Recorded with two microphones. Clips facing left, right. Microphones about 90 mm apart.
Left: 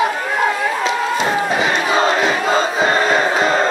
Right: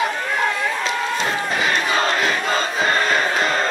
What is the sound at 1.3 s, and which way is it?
Crowd, 10° left (ahead or behind).